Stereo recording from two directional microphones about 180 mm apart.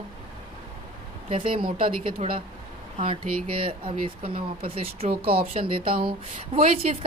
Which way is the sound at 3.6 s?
30° right (ahead or behind).